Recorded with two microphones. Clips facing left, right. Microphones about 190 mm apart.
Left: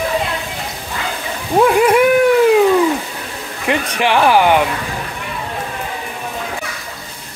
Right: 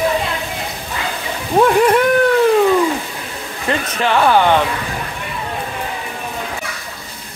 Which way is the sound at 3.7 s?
15° left (ahead or behind).